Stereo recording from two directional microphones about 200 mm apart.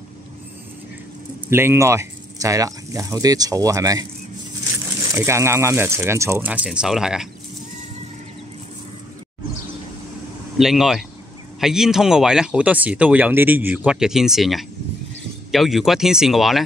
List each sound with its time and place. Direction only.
1.5 s speech: 10° right (ahead or behind)
5.0 s speech: 15° right (ahead or behind)
10.6 s speech: centre (ahead or behind)